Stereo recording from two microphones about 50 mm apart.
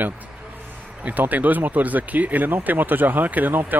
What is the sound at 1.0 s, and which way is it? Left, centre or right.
Speech, right.